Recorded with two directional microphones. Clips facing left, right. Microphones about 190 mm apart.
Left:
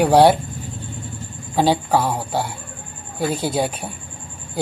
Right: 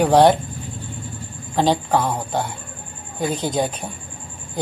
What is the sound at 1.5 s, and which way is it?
Speech, 10° left (ahead or behind).